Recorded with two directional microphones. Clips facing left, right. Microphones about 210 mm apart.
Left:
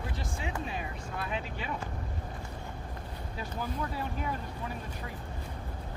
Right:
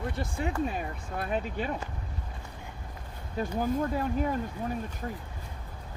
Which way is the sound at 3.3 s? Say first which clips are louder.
Right 9 dB; 45° right (ahead or behind).